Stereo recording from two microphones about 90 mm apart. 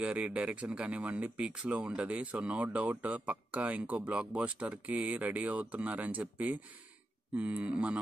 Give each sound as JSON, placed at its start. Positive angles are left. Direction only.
{"t": 0.0, "sound": "speech", "side_deg": -15}